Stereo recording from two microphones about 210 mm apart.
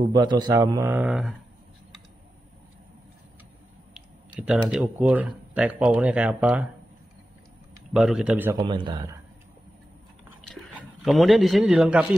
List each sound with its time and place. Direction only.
0.1 s speech: 20° right (ahead or behind); by 1.3 s 5° right (ahead or behind)
3.9 s a sound: 5° right (ahead or behind)
4.6 s speech: 5° right (ahead or behind)
7.9 s speech: centre (ahead or behind)
8.5 s speech: 20° right (ahead or behind)
10.4 s speech: centre (ahead or behind)